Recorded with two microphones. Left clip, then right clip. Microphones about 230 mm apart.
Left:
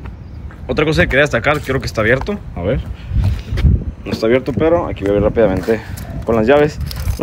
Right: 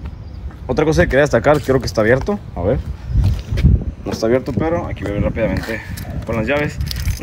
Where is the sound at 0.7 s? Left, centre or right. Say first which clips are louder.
Left 1 dB; centre.